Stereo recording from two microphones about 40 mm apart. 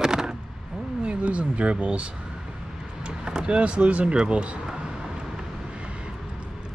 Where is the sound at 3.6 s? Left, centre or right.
Right.